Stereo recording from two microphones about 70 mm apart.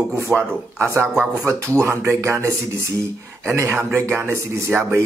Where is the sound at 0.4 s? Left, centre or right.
Right.